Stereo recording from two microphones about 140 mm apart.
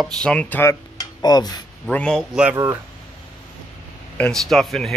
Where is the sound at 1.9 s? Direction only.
5° left (ahead or behind).